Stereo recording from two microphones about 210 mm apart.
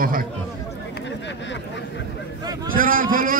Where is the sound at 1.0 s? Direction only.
60° left (ahead or behind).